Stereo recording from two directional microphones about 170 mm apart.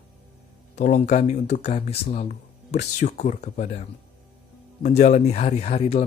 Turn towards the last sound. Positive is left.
turn(degrees=35)  # may be behind; listen again after turning